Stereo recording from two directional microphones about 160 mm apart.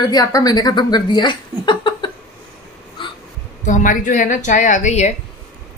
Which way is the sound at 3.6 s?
55° left (ahead or behind).